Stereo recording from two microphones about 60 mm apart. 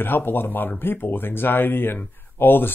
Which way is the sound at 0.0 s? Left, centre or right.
Left.